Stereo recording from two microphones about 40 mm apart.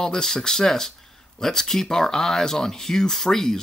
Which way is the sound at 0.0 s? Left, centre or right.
Centre.